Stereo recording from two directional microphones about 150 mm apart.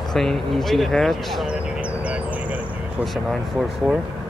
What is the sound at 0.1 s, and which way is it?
Speech, centre (ahead or behind).